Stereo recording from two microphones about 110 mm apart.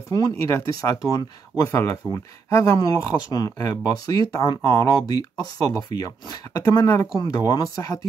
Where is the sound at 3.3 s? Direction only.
35° left (ahead or behind).